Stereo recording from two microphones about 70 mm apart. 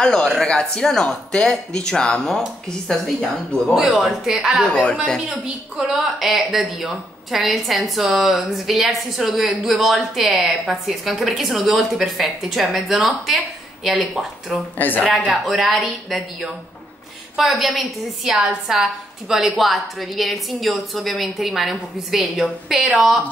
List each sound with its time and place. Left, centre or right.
0.0 s speech: centre
3.7 s a woman's voice: centre
4.6 s speech: centre
5.8 s a woman's voice: centre
14.8 s speech: left
15.4 s a woman's voice: centre